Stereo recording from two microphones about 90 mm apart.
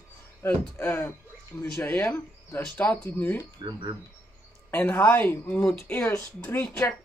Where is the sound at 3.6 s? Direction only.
60° right (ahead or behind).